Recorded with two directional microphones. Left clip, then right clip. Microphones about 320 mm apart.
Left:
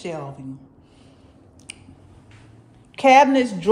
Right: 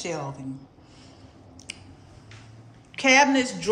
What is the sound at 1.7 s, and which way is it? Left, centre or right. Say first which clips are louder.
Finger snapping: right 1 dB; centre.